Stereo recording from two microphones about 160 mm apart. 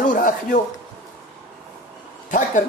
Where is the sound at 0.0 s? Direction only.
55° left (ahead or behind).